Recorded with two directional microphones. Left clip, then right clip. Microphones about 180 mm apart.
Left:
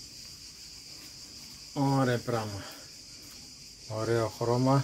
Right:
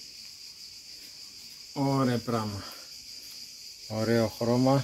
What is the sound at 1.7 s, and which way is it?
Speech, 45° right (ahead or behind).